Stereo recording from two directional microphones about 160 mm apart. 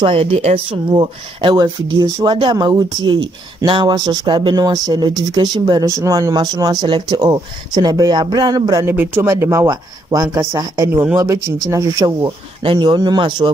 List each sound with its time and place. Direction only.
0.0 s speech: 35° right (ahead or behind)
0.9 s speech: 30° right (ahead or behind)